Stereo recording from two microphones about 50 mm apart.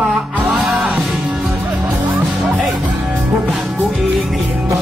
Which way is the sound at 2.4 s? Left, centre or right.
Centre.